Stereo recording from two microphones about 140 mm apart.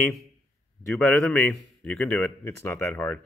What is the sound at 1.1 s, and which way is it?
Speech, 15° left (ahead or behind).